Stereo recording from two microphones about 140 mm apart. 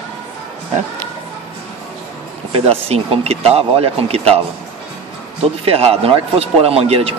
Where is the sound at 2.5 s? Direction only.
45° right (ahead or behind).